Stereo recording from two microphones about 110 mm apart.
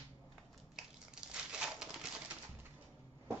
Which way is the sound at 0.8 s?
5° right (ahead or behind).